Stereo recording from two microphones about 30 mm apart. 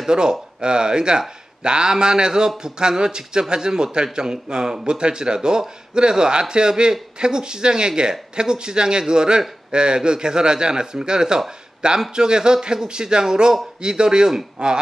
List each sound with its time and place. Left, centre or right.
0.1 s speech: right